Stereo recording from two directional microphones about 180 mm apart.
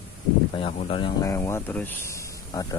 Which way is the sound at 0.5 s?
30° left (ahead or behind).